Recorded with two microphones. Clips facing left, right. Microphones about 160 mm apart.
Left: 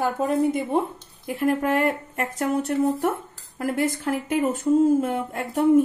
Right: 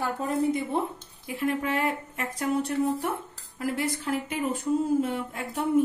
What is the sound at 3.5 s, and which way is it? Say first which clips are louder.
Speech: left 5 dB; 50° left (ahead or behind).